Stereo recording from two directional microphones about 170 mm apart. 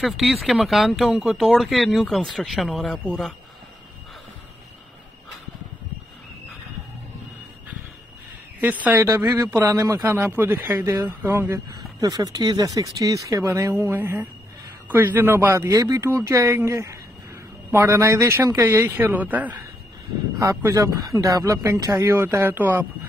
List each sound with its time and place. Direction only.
0.0 s speech: centre (ahead or behind)
8.5 s speech: 10° right (ahead or behind)